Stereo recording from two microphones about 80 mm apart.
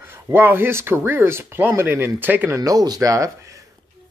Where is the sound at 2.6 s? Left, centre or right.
Right.